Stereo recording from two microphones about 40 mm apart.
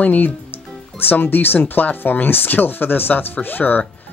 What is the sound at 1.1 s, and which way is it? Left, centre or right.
Speech, left.